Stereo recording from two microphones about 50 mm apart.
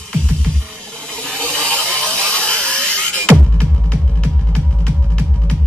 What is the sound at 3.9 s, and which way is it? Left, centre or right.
Music, centre.